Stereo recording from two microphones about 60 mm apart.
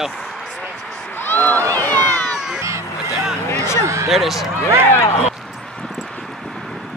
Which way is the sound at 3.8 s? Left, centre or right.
Right.